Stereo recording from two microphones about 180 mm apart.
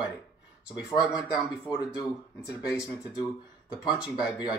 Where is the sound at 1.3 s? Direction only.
25° left (ahead or behind).